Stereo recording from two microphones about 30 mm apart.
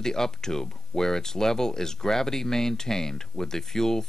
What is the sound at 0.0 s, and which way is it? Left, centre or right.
Speech, centre.